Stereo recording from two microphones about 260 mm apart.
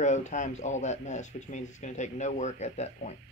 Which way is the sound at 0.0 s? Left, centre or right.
Left.